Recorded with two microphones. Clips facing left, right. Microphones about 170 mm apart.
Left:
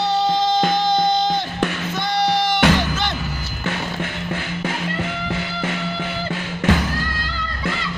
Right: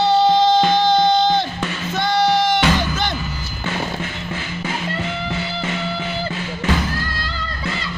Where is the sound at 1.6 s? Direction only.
60° left (ahead or behind).